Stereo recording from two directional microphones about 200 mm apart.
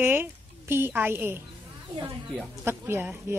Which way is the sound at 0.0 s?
10° right (ahead or behind).